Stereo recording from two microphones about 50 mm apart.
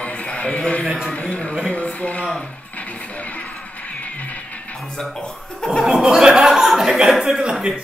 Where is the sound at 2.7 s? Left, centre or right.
Left.